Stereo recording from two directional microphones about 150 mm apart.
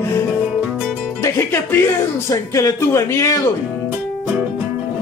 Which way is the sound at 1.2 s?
15° left (ahead or behind).